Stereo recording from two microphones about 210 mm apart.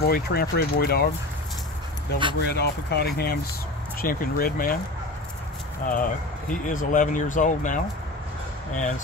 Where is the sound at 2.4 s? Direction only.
50° left (ahead or behind).